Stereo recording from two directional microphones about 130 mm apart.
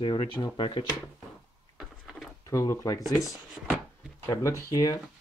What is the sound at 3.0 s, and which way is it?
Speech, centre (ahead or behind).